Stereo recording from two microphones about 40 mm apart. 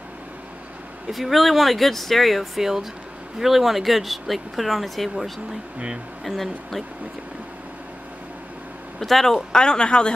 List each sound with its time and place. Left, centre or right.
1.1 s speech: centre
2.6 s speech: centre
6.2 s speech: centre
9.0 s speech: centre; by 10.1 s left